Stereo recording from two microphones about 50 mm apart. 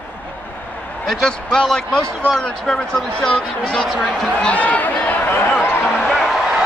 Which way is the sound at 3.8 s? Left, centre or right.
Centre.